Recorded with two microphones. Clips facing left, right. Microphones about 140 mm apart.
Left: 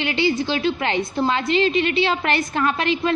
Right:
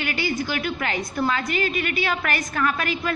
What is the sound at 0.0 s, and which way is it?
A woman's voice, 25° left (ahead or behind).